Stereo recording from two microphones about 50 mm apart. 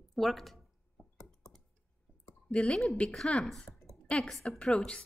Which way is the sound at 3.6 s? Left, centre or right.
Centre.